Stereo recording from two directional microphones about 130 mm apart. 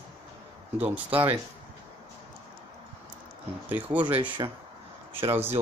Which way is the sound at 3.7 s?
15° right (ahead or behind).